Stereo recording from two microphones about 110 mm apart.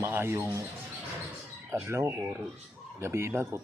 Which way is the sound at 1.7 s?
25° right (ahead or behind).